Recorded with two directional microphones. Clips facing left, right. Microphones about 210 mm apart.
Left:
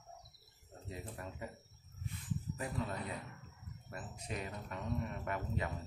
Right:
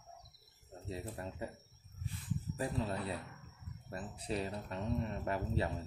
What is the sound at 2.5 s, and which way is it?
Speech, 30° right (ahead or behind).